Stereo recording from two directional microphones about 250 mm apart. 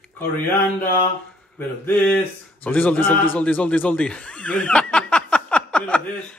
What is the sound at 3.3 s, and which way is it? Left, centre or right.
Speech, centre.